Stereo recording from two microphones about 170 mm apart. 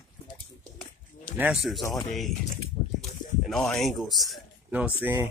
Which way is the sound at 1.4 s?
Centre (ahead or behind).